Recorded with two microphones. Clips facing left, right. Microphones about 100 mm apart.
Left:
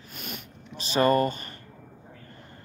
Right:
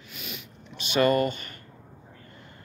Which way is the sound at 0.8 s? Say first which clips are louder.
Even; 35° left (ahead or behind).